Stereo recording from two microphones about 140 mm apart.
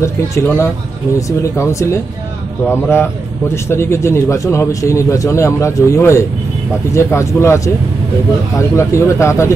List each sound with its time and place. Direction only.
0.0 s a man's voice: 20° left (ahead or behind)